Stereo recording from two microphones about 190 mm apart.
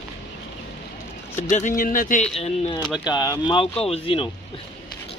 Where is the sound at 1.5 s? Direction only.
40° left (ahead or behind).